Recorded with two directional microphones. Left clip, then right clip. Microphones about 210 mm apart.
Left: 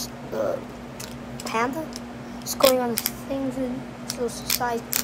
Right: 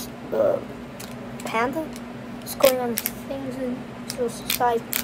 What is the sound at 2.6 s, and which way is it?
Speech, 30° left (ahead or behind).